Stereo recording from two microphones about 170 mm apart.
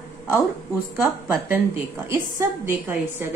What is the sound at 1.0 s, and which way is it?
A woman's voice, 10° right (ahead or behind).